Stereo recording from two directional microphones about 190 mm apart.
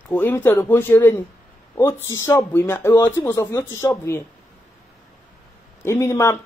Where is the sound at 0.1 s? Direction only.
10° left (ahead or behind).